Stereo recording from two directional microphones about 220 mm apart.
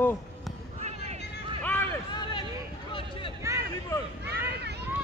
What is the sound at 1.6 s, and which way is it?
Run, 10° left (ahead or behind).